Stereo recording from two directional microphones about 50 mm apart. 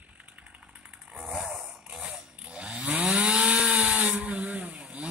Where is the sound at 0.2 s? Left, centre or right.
Right.